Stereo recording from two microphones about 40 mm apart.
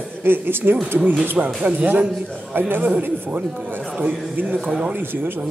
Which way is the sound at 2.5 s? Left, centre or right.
Right.